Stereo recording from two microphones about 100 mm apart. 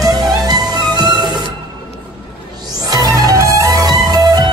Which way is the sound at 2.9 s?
40° right (ahead or behind).